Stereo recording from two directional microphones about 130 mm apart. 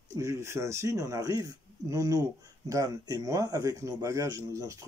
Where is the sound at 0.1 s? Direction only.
25° right (ahead or behind).